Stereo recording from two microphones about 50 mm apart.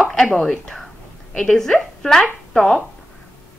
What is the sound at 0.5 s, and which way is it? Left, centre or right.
A woman's voice, centre.